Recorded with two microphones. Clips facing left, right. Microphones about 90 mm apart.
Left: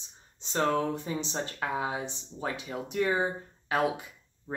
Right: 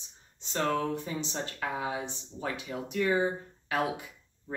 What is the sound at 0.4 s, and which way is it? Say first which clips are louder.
Speech: left 2 dB; 25° left (ahead or behind).